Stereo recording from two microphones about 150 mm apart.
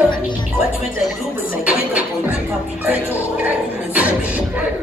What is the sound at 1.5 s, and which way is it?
Music, 10° right (ahead or behind).